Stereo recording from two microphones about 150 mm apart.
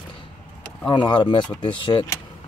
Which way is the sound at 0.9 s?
30° left (ahead or behind).